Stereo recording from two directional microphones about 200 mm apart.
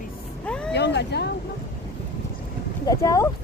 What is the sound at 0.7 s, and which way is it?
Speech, 60° left (ahead or behind).